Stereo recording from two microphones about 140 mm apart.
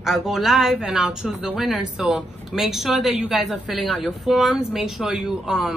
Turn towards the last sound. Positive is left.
turn(degrees=-5)  # may be behind; listen again after turning